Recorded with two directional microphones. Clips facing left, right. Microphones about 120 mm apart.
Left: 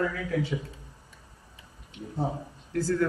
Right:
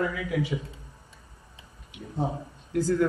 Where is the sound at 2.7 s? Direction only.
15° right (ahead or behind).